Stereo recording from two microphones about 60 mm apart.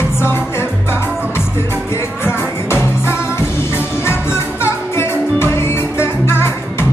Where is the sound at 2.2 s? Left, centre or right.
Left.